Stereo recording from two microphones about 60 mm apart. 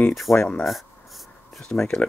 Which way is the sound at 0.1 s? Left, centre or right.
Centre.